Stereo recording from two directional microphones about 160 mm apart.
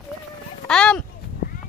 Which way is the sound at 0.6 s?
5° left (ahead or behind).